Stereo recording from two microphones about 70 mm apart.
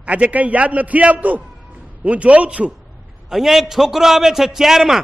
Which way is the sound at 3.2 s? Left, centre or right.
Centre.